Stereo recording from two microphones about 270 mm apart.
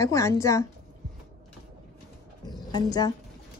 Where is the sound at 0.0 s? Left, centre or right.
Centre.